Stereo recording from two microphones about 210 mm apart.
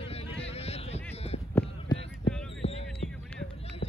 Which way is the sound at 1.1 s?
30° left (ahead or behind).